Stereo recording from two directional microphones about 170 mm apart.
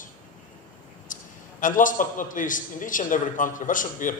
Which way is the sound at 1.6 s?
50° left (ahead or behind).